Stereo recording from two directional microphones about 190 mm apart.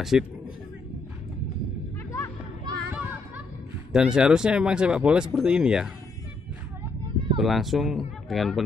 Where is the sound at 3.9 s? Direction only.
5° right (ahead or behind).